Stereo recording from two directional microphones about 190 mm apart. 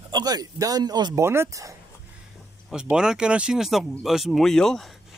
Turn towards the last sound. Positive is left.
turn(degrees=0)  # may be behind; listen again after turning